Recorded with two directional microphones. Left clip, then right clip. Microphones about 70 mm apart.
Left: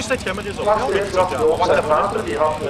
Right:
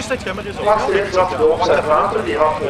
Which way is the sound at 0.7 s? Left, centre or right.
Right.